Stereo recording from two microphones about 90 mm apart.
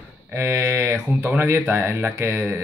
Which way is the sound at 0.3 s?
25° right (ahead or behind).